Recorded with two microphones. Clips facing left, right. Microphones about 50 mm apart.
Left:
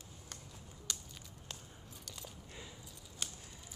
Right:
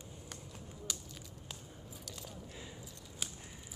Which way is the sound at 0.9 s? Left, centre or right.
Centre.